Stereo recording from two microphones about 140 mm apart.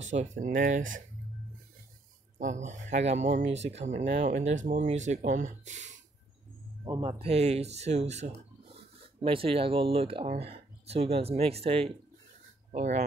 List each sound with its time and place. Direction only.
0.0 s speech: 60° right (ahead or behind)
2.3 s speech: 60° right (ahead or behind)
6.8 s speech: 30° right (ahead or behind)
7.1 s speech: 45° right (ahead or behind)
9.0 s speech: 40° right (ahead or behind)
12.7 s speech: 55° right (ahead or behind)